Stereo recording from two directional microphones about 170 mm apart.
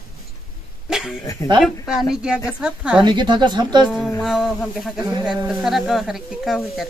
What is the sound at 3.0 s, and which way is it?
Speech, 25° right (ahead or behind).